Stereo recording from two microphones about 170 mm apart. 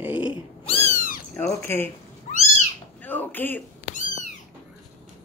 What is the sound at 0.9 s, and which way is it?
Cat, 55° left (ahead or behind).